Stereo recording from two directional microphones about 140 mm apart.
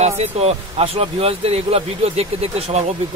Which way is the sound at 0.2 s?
50° right (ahead or behind).